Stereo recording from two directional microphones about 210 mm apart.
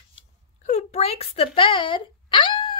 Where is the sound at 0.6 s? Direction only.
30° left (ahead or behind).